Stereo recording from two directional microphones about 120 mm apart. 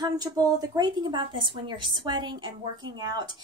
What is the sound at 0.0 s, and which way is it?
A woman's voice, 30° right (ahead or behind).